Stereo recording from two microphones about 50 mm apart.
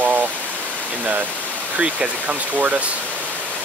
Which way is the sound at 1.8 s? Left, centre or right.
Right.